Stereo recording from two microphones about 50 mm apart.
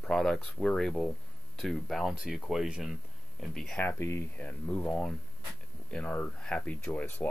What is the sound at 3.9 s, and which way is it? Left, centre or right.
Speech, left.